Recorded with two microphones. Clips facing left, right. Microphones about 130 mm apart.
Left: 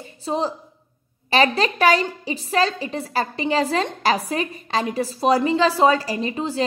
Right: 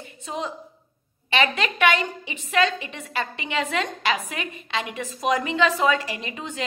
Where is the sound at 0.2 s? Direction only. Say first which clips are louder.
Left 7 dB; 30° left (ahead or behind).